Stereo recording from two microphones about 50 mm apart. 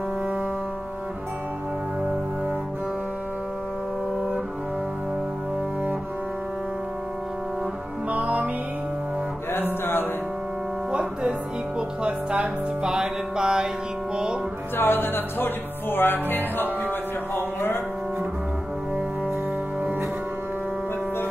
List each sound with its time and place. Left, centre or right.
8.1 s music: right
9.5 s music: left
10.9 s music: right
14.8 s music: left